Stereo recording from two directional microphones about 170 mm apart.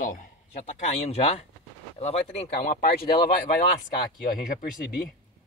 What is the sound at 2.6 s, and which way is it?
Speech, 55° left (ahead or behind).